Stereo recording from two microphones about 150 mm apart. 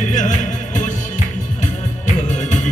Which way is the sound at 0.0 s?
55° left (ahead or behind).